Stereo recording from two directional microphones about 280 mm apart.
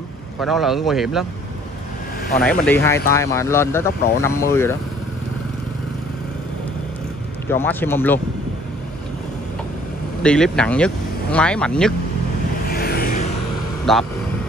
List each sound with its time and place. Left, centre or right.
0.5 s speech: centre
2.6 s speech: centre
7.4 s speech: centre
10.2 s speech: centre
12.6 s vehicle: left
13.9 s speech: centre